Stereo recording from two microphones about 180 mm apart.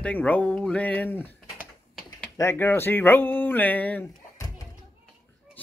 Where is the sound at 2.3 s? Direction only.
15° left (ahead or behind).